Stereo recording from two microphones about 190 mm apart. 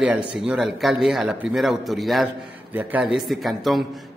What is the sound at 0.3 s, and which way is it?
A man's voice, 5° right (ahead or behind).